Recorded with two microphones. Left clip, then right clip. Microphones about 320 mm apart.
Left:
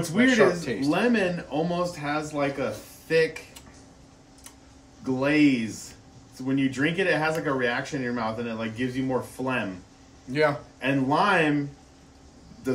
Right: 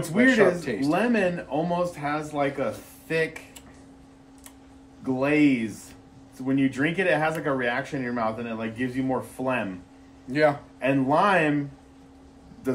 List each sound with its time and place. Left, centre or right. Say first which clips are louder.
0.1 s speech: right 1 dB; centre
5.0 s speech: right 1 dB; centre
6.4 s speech: right 1 dB; centre